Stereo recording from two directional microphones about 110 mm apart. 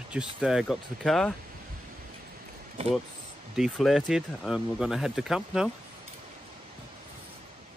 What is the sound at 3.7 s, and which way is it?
Speech, centre (ahead or behind).